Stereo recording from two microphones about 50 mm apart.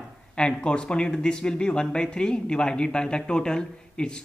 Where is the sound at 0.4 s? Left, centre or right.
Centre.